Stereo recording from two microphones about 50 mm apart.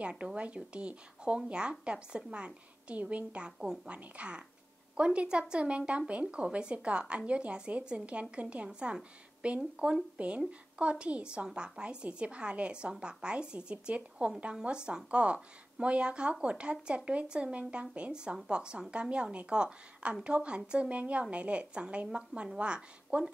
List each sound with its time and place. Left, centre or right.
0.0 s speech: right
8.6 s speech: centre